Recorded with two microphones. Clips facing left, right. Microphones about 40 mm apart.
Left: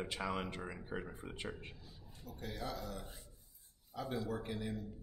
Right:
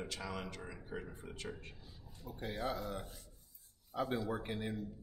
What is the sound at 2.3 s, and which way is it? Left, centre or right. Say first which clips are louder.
Speech: right 4 dB; right.